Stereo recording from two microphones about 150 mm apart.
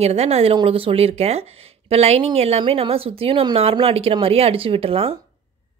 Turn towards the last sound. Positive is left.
turn(degrees=-40)  # may be behind; listen again after turning